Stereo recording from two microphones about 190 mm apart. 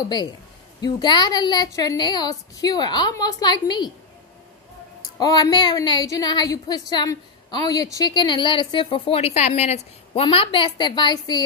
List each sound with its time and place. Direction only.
0.7 s a woman's voice: 20° left (ahead or behind)
5.2 s a woman's voice: 20° left (ahead or behind)